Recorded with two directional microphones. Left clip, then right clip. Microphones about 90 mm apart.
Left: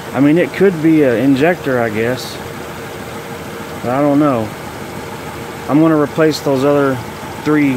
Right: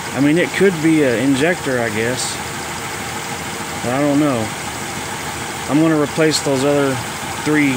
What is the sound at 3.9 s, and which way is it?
Speech, 5° left (ahead or behind).